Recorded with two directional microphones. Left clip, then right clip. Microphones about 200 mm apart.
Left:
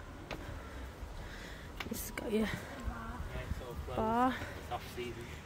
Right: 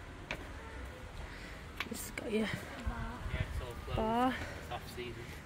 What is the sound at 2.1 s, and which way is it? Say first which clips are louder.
Speech: left 1 dB; 5° left (ahead or behind).